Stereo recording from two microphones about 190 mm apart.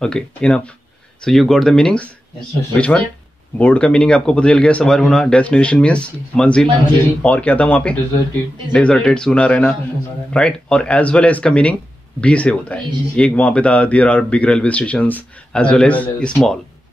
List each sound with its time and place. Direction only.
0.0 s speech: 5° left (ahead or behind)